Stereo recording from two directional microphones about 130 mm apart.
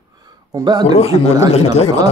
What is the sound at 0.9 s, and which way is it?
Speech, 55° left (ahead or behind).